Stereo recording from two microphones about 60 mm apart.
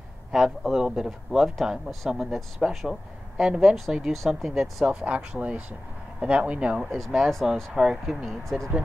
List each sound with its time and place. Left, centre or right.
0.3 s a man's voice: centre
4.8 s speech: centre
6.8 s speech: centre
7.7 s a man's voice: centre
8.3 s speech: centre